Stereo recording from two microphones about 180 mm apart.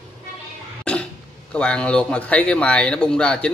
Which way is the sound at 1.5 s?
5° left (ahead or behind).